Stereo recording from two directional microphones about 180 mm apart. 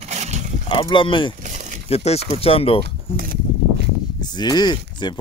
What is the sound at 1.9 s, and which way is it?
Speech, 35° left (ahead or behind).